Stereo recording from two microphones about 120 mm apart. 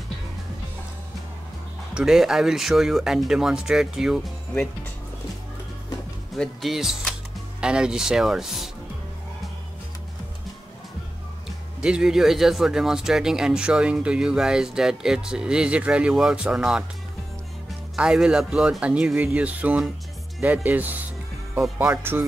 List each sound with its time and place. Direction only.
2.0 s speech: 5° right (ahead or behind)
6.3 s speech: centre (ahead or behind)
11.4 s speech: 5° right (ahead or behind)
17.9 s speech: 5° right (ahead or behind)